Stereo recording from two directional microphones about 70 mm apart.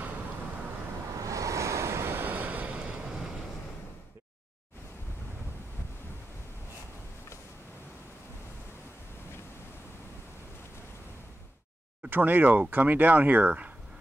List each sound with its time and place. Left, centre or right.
1.2 s waves: right
12.1 s speech: right